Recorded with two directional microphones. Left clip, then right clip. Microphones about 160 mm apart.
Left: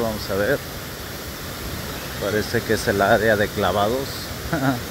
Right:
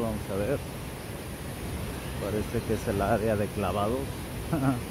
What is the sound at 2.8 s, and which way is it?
Speech, 30° left (ahead or behind).